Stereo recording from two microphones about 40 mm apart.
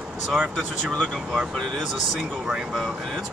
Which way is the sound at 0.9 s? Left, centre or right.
Centre.